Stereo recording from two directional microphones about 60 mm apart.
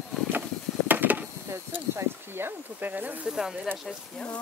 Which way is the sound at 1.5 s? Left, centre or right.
Right.